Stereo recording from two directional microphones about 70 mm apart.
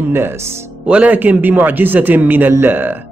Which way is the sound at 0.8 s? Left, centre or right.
Centre.